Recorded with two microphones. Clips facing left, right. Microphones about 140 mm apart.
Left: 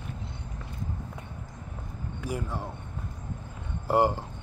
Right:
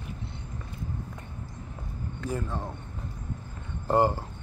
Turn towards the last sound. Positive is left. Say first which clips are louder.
# even
turn(degrees=15)  # may be behind; listen again after turning